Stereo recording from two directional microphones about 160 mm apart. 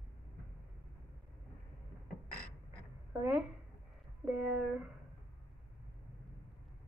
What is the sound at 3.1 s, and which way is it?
Speech, 15° right (ahead or behind).